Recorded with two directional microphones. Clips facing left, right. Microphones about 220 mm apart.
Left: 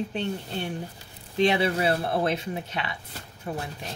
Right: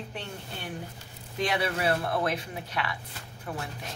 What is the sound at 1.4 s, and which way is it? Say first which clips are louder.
A woman's voice: left 6 dB; 25° left (ahead or behind).